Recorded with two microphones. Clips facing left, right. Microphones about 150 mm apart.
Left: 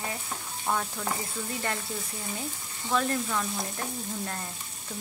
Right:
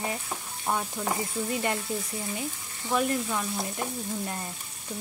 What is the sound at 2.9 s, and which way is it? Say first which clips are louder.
Speech: right 1 dB; 15° right (ahead or behind).